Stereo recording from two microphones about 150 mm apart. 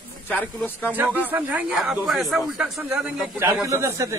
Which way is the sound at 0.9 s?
10° right (ahead or behind).